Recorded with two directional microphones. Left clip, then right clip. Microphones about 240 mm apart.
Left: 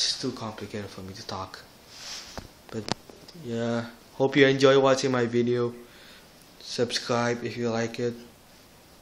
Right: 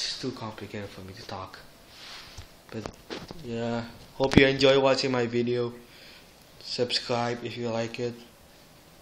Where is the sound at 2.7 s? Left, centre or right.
Centre.